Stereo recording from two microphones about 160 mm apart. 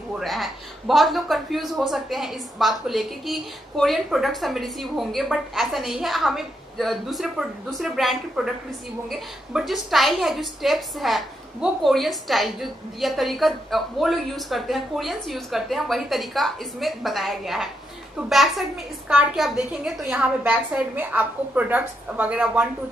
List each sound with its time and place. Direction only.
0.2 s a woman's voice: centre (ahead or behind)